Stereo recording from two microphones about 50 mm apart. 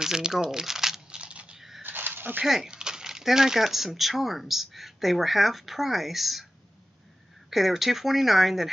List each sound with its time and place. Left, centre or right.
0.0 s crumpling: centre
1.2 s a sound: right
1.8 s dog: right
2.4 s speech: centre
7.4 s speech: centre